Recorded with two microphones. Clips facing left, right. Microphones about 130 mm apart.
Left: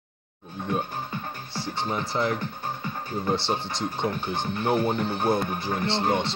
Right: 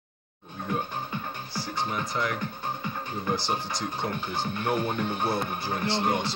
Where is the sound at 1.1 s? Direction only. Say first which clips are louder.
Even; 25° left (ahead or behind).